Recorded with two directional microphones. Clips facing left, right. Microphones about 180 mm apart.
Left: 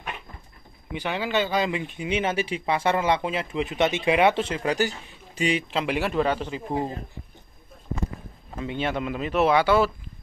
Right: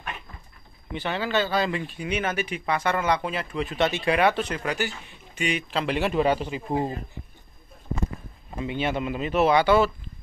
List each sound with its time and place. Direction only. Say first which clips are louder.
0.9 s speech: even; 15° left (ahead or behind)
4.7 s a man's voice: left 4 dB; 35° left (ahead or behind)
5.9 s speech: right 2 dB; 5° left (ahead or behind)
6.1 s speech: right 1 dB; 10° right (ahead or behind)
8.5 s speech: right 1 dB; 5° right (ahead or behind)